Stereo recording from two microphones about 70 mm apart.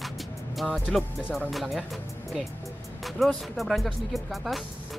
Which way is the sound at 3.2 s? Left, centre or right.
Centre.